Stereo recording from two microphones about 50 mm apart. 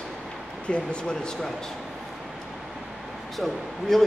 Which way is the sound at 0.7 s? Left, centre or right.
Centre.